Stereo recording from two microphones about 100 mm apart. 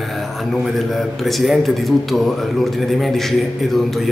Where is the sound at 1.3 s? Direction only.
Centre (ahead or behind).